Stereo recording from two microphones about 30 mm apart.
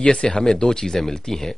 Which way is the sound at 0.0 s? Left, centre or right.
Left.